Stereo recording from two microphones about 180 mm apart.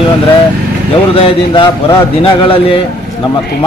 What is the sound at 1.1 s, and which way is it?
A man's voice, 25° left (ahead or behind).